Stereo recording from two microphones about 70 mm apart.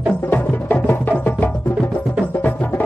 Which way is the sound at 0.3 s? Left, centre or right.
Left.